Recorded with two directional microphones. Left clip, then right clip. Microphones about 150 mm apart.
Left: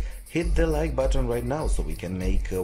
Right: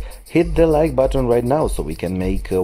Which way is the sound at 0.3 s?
25° right (ahead or behind).